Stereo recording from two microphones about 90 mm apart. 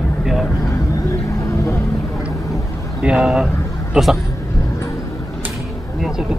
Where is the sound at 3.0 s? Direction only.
10° right (ahead or behind).